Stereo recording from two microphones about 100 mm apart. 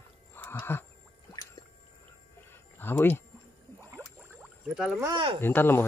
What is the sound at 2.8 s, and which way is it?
Speech, 20° left (ahead or behind).